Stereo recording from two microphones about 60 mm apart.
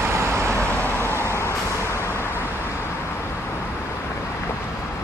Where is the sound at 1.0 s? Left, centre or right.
Left.